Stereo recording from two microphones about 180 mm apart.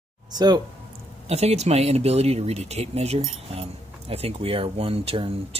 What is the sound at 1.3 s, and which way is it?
Speech, 35° right (ahead or behind).